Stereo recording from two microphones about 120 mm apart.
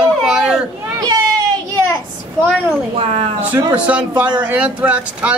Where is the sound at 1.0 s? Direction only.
30° right (ahead or behind).